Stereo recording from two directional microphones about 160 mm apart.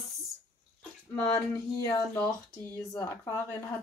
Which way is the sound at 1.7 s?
15° left (ahead or behind).